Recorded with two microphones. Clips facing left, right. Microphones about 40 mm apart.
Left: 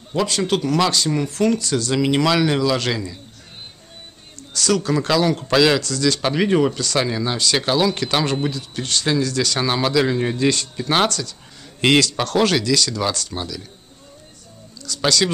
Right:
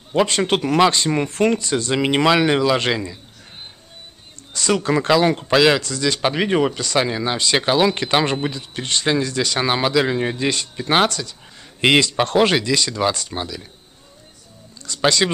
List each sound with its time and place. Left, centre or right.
0.1 s speech: right
4.6 s speech: right
15.0 s speech: right